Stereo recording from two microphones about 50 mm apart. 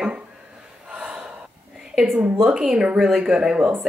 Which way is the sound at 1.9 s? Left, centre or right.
Centre.